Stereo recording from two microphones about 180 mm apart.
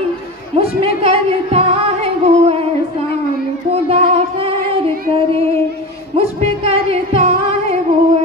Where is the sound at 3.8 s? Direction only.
35° right (ahead or behind).